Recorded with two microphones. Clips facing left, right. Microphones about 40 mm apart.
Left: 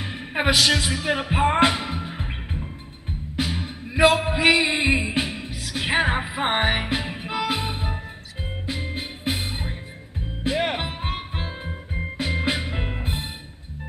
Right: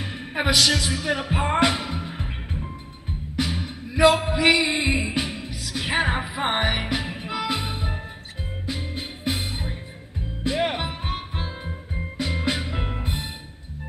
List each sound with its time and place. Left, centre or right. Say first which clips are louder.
0.0 s music: left 2 dB; left
3.3 s music: even; left
3.6 s a sound: even; left
4.6 s music: left 2 dB; left